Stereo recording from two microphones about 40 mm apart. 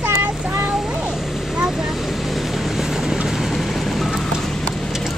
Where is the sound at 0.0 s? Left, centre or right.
Right.